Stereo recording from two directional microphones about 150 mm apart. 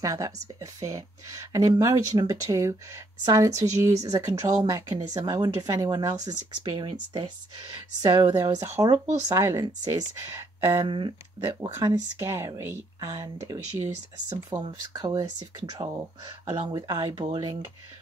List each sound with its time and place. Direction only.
0.0 s speech: 20° right (ahead or behind)
10.9 s speech: 30° right (ahead or behind)
11.7 s speech: 20° right (ahead or behind)